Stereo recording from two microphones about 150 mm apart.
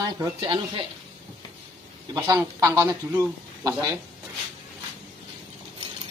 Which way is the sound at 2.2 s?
25° right (ahead or behind).